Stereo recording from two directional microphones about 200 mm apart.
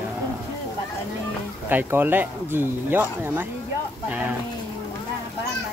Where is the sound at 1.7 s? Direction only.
10° right (ahead or behind).